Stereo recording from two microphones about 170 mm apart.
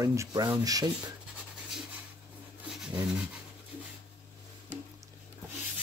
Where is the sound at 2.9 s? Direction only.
5° right (ahead or behind).